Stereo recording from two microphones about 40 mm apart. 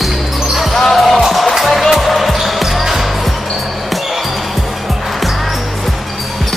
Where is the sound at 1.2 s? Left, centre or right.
Centre.